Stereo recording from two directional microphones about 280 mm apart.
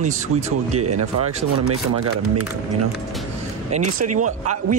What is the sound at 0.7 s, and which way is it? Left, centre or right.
Speech, right.